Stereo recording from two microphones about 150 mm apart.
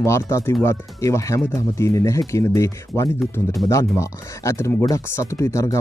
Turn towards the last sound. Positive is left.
turn(degrees=20)  # may be behind; listen again after turning